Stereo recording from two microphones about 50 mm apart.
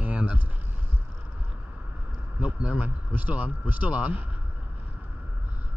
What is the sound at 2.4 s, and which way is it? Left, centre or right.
Speech, right.